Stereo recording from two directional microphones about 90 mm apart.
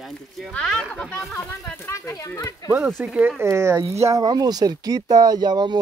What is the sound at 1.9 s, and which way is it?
Speech, 30° left (ahead or behind).